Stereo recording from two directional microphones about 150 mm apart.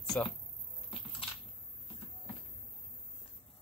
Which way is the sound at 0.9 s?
35° left (ahead or behind).